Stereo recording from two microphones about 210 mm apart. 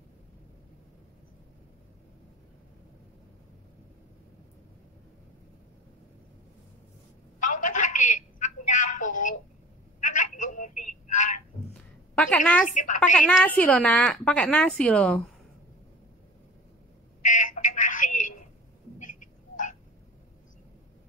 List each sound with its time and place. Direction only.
7.3 s telephone: 35° left (ahead or behind)
11.7 s a sound: 5° left (ahead or behind)
12.7 s a woman's voice: 35° left (ahead or behind)
13.1 s a woman's voice: 5° left (ahead or behind)
17.2 s telephone: 35° left (ahead or behind)
18.9 s frog: 40° left (ahead or behind)